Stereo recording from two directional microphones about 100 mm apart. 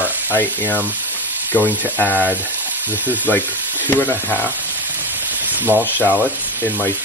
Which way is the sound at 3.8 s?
20° left (ahead or behind).